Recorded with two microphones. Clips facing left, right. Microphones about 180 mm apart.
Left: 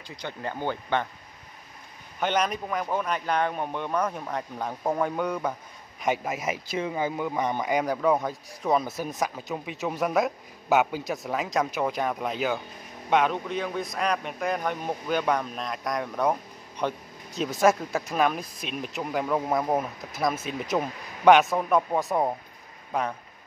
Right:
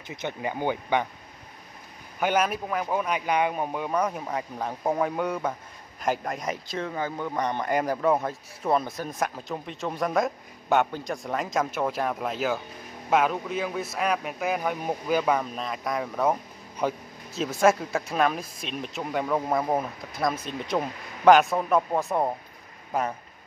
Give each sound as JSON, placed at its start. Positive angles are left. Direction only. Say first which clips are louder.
{"t": 0.0, "sound": "speech", "louder": "right 3 dB", "side_deg": -20}
{"t": 2.1, "sound": "speech", "louder": "right 1 dB", "side_deg": -5}